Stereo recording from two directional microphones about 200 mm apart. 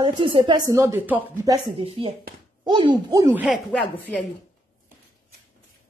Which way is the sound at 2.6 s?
25° right (ahead or behind).